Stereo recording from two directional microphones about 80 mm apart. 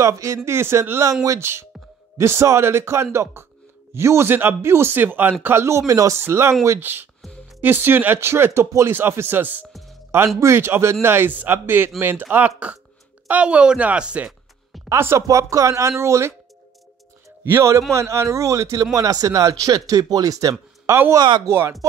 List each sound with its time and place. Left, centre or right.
0.0 s speech: right; by 14.3 s centre
14.9 s speech: right
17.4 s speech: right